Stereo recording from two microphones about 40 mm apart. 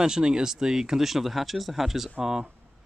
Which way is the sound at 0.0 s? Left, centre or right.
Centre.